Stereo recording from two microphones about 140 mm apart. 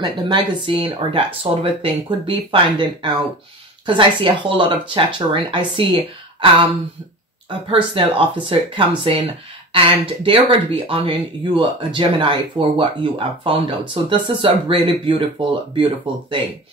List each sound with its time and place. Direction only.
0.0 s speech: 35° right (ahead or behind)
7.7 s speech: 35° right (ahead or behind)